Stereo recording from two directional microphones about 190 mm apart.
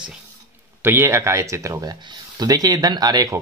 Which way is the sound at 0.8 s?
15° right (ahead or behind).